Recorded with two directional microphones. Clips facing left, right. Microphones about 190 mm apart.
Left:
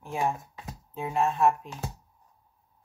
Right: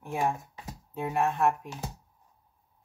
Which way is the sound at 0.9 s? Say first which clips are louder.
Left 1 dB; 60° right (ahead or behind).